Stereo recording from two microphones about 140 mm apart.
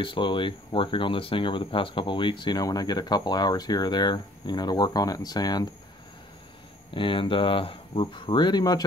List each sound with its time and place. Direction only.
0.0 s speech: 35° left (ahead or behind)
6.9 s speech: 35° left (ahead or behind)